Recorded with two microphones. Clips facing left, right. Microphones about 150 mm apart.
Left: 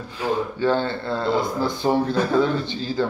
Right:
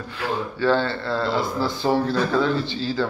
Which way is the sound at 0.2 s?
15° left (ahead or behind).